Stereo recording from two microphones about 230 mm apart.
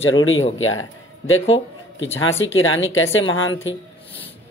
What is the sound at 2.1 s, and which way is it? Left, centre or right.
Speech, left.